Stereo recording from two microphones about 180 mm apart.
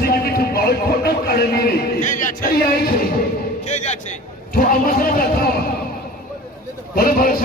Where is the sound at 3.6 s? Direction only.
40° left (ahead or behind); by 5.5 s 55° left (ahead or behind).